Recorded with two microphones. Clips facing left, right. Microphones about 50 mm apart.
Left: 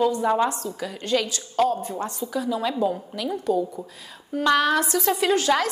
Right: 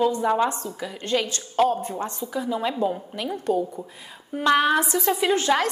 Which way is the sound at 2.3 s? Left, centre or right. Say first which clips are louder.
Left 1 dB; centre.